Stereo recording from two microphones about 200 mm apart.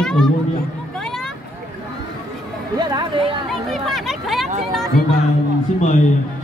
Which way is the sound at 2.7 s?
25° right (ahead or behind).